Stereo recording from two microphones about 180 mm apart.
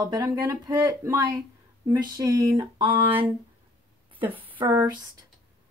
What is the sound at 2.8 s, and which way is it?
Speech, 30° right (ahead or behind).